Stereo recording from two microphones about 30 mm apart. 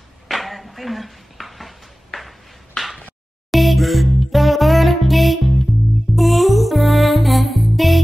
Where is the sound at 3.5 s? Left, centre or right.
Centre.